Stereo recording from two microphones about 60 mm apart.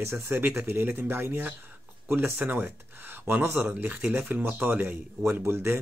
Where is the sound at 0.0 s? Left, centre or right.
Right.